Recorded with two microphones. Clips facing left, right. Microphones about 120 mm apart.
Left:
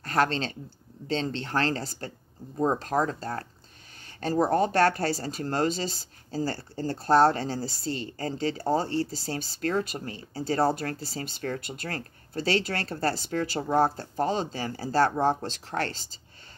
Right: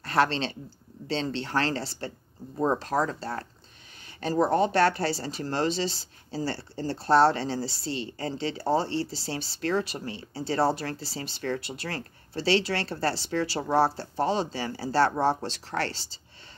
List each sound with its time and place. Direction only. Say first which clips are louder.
0.0 s speech: right 1 dB; 45° left (ahead or behind)
4.2 s speech: even; 40° left (ahead or behind)
6.5 s speech: even; 25° right (ahead or behind)
7.0 s speech: even; 45° left (ahead or behind)
8.8 s speech: left 1 dB; 25° right (ahead or behind)
9.1 s speech: left 1 dB; 45° left (ahead or behind)